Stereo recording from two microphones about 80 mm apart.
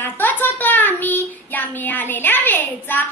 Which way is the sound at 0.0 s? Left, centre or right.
Left.